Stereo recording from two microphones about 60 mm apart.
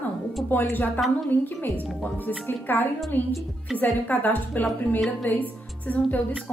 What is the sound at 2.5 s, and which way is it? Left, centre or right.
A woman's voice, left.